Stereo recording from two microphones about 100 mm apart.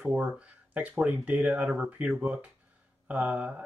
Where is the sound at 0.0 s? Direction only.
15° right (ahead or behind).